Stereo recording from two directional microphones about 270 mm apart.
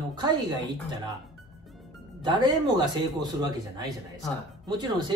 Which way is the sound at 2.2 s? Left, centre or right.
Centre.